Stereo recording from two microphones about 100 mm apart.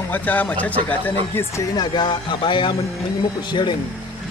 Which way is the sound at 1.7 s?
45° left (ahead or behind).